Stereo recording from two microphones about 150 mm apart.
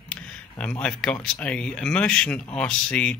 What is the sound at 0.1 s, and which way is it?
Speech, 5° left (ahead or behind).